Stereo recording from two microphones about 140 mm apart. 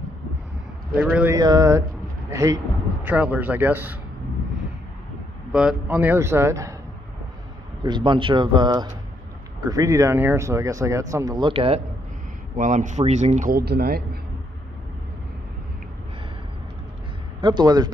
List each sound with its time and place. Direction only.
1.3 s a man's voice: 25° right (ahead or behind)
5.5 s speech: 5° right (ahead or behind)
7.8 s speech: 35° right (ahead or behind)
12.5 s speech: 65° right (ahead or behind); by 14.0 s 90° right
17.4 s speech: 30° right (ahead or behind)